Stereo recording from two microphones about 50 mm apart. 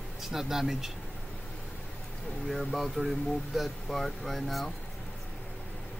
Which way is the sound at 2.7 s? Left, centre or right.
Centre.